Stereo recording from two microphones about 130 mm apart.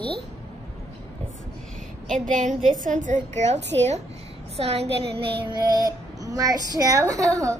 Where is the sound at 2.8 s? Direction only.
75° right (ahead or behind); by 4.8 s 50° right (ahead or behind).